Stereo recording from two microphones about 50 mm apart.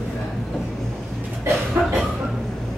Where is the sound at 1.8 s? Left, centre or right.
Right.